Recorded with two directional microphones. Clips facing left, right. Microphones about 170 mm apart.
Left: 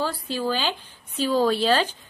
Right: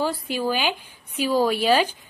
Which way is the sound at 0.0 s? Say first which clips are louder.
Right 2 dB; 15° right (ahead or behind).